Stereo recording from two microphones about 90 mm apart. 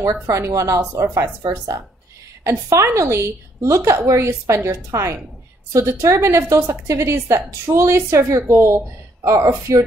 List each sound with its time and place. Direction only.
0.3 s a woman's voice: 35° right (ahead or behind)
2.4 s a woman's voice: 35° right (ahead or behind)